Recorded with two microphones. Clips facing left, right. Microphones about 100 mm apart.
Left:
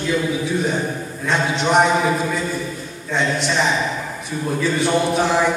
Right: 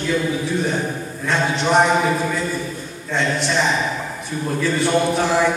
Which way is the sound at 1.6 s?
10° left (ahead or behind).